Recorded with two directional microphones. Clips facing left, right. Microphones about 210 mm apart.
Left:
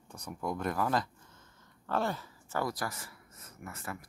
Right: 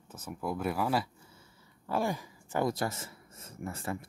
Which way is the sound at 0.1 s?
5° right (ahead or behind).